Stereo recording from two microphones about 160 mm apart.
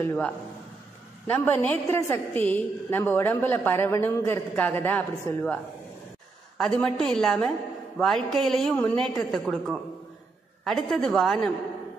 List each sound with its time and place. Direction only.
0.0 s a woman's voice: 10° left (ahead or behind)
7.1 s a woman's voice: 5° left (ahead or behind)